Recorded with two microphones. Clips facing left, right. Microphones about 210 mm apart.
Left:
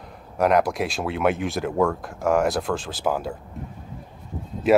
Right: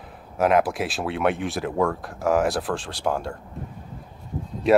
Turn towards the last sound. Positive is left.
turn(degrees=0)  # may be behind; listen again after turning